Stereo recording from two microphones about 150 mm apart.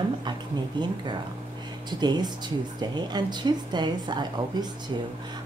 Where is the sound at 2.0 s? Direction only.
30° right (ahead or behind).